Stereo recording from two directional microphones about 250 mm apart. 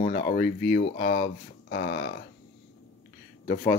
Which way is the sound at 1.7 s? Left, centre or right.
Left.